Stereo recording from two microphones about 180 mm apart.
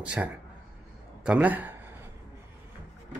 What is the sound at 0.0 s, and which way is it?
A man's voice, 5° right (ahead or behind).